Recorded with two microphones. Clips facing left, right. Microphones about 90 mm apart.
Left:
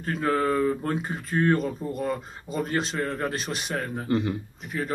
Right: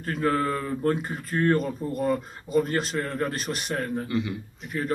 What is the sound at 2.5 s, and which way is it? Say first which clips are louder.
Speech: right 3 dB; centre (ahead or behind).